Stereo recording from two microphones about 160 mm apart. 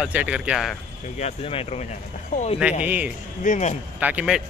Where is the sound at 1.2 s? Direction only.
35° left (ahead or behind).